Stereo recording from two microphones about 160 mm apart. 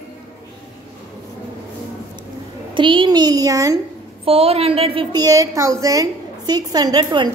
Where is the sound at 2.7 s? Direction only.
30° right (ahead or behind).